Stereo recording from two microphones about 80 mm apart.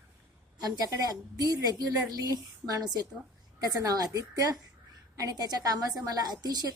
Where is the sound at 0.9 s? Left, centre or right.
Right.